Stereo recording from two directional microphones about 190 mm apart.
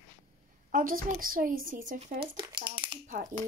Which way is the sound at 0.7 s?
45° right (ahead or behind).